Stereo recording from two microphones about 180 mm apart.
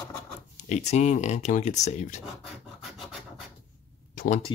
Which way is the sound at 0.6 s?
40° left (ahead or behind).